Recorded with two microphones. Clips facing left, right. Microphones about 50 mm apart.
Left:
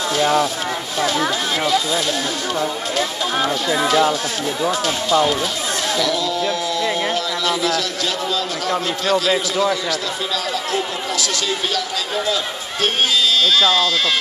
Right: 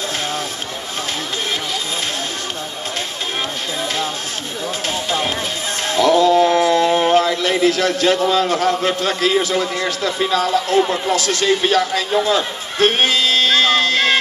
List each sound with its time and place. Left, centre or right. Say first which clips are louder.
3.7 s speech: left 8 dB; left
4.8 s speech: left 3 dB; right